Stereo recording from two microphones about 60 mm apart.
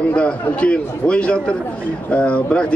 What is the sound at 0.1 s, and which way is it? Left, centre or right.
A man's voice, centre.